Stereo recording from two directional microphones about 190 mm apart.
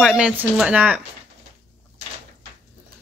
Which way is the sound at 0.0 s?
5° right (ahead or behind).